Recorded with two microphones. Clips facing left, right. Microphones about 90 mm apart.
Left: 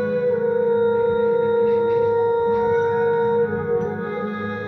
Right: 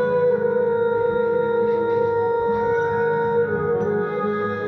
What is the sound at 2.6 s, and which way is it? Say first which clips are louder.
Music: left 1 dB; 10° right (ahead or behind).